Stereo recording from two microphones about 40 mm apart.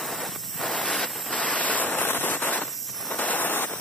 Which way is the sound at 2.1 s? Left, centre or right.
Left.